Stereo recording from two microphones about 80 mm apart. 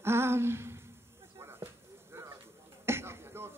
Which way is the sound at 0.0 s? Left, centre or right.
Right.